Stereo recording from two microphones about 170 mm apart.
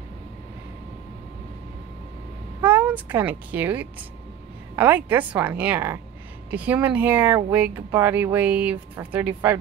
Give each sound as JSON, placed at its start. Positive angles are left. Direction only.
{"t": 2.6, "sound": "speech", "side_deg": -10}